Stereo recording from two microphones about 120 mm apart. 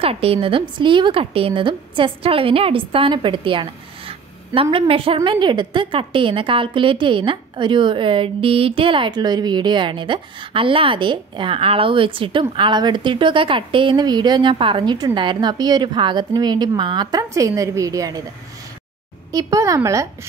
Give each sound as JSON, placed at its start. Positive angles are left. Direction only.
{"t": 0.0, "sound": "a woman's voice", "side_deg": -55}
{"t": 17.3, "sound": "a woman's voice", "side_deg": -25}
{"t": 19.3, "sound": "a woman's voice", "side_deg": -25}